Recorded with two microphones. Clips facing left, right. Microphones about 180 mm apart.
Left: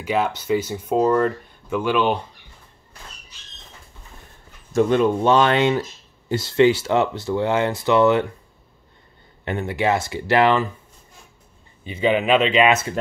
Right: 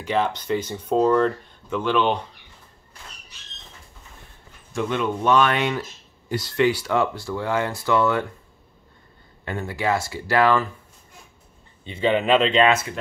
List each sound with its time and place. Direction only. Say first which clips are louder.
0.0 s speech: left 1 dB; 10° left (ahead or behind)
4.7 s speech: left 7 dB; 35° left (ahead or behind); by 8.3 s 20° left (ahead or behind)
9.4 s speech: left 4 dB; 25° left (ahead or behind)
11.8 s speech: left 1 dB; 5° left (ahead or behind)